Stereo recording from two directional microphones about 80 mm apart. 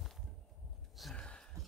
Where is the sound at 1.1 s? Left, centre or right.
Centre.